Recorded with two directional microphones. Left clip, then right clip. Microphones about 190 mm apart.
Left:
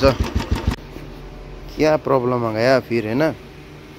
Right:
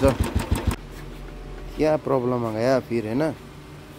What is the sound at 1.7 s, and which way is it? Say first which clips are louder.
Speech: left 5 dB; 5° right (ahead or behind).